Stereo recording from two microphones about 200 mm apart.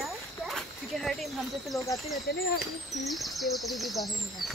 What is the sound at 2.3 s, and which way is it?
Speech, 55° left (ahead or behind).